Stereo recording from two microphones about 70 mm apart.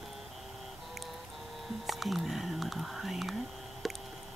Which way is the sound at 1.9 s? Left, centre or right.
Centre.